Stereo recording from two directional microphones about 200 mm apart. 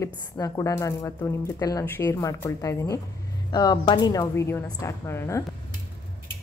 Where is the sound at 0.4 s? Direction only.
15° left (ahead or behind).